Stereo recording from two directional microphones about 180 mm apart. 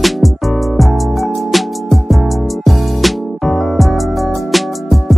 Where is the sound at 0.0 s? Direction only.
Centre (ahead or behind).